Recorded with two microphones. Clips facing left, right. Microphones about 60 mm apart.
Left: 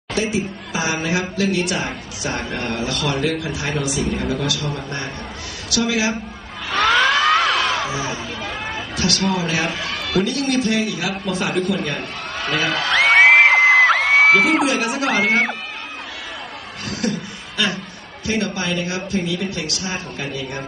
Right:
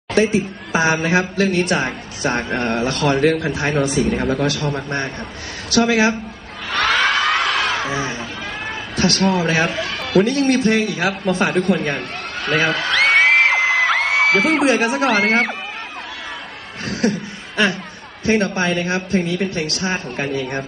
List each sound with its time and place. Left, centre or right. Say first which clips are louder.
0.1 s a man's voice: right 5 dB; right
7.0 s music: left 2 dB; centre
7.8 s music: right 1 dB; right
8.9 s speech: right 4 dB; right
9.8 s speech: right 4 dB; right
12.9 s music: left 3 dB; left
13.6 s music: left 3 dB; left
14.6 s a man's voice: right 3 dB; right
16.8 s chuckle: right 4 dB; right
18.2 s speech: right 5 dB; right